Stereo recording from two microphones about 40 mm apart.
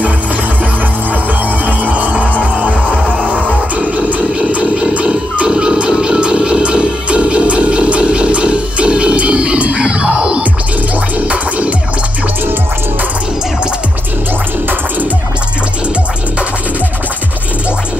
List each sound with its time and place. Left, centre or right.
1.9 s music: right
2.9 s music: left
3.7 s music: right
5.5 s music: centre